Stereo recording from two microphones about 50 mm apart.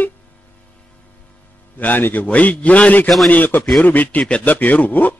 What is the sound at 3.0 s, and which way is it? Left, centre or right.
Speech, centre.